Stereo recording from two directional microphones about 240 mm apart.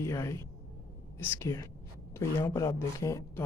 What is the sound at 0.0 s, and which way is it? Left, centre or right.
Speech, centre.